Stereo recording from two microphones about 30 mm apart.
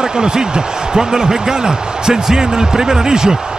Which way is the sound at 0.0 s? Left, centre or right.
Right.